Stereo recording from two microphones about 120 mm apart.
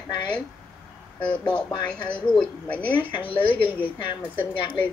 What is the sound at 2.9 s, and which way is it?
A woman's voice, 45° left (ahead or behind).